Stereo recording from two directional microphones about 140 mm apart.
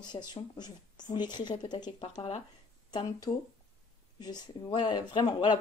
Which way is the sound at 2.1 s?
55° left (ahead or behind).